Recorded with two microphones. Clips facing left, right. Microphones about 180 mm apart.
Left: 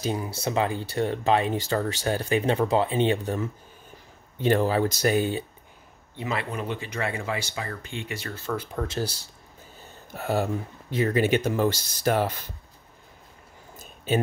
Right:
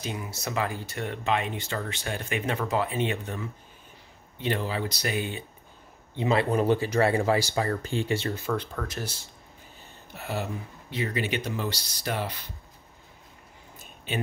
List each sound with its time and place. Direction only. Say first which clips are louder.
0.0 s speech: left 6 dB; 35° left (ahead or behind)
4.4 s speech: left 7 dB; 45° left (ahead or behind)
6.1 s speech: right 6 dB; 30° right (ahead or behind)
8.7 s speech: left 5 dB; 30° left (ahead or behind)
10.1 s speech: left 7 dB; 45° left (ahead or behind)
13.7 s a sound: left 7 dB; 40° left (ahead or behind)